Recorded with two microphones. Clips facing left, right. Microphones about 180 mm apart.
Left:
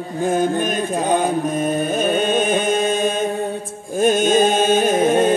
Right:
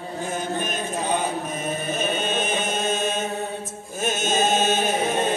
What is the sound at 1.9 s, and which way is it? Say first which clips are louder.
Chant: left 7 dB; 50° left (ahead or behind).